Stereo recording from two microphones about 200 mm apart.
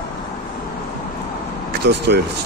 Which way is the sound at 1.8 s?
55° right (ahead or behind).